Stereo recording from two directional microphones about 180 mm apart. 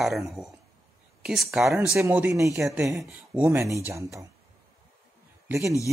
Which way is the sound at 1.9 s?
10° right (ahead or behind).